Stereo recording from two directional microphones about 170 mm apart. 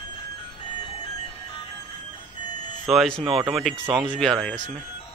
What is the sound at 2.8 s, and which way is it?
Speech, centre (ahead or behind).